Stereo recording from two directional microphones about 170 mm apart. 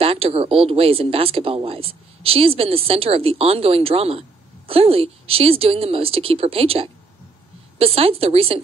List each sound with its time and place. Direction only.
0.0 s speech: 35° right (ahead or behind)